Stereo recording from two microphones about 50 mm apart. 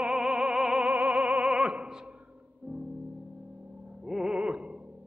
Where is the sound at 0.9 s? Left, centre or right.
Right.